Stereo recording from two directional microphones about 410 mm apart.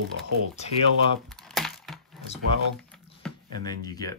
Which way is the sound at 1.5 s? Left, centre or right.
Centre.